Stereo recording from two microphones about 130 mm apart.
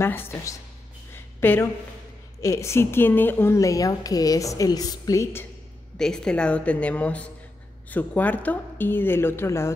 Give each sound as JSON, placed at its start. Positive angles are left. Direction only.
{"t": 0.0, "sound": "speech", "side_deg": 20}
{"t": 1.1, "sound": "a sound", "side_deg": 15}
{"t": 2.4, "sound": "speech", "side_deg": 20}
{"t": 5.9, "sound": "a woman's voice", "side_deg": 5}